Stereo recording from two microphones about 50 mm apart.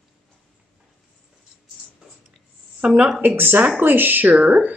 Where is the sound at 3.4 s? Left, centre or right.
Right.